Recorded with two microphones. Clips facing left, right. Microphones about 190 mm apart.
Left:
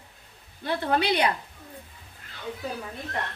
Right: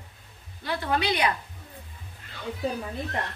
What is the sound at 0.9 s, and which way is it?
Speech, 60° left (ahead or behind).